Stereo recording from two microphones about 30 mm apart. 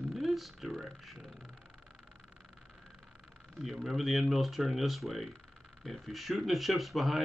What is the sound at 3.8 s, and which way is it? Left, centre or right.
Speech, centre.